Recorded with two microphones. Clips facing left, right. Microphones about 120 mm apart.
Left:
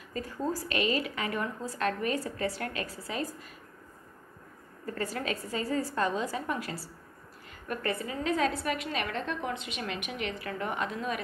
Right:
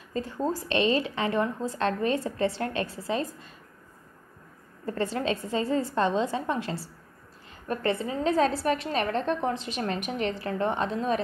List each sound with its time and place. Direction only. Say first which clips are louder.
0.1 s a woman's voice: right 4 dB; 25° right (ahead or behind)
4.8 s a woman's voice: right 5 dB; 25° right (ahead or behind)